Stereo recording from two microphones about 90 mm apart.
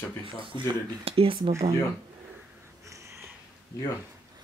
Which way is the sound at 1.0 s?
90° right.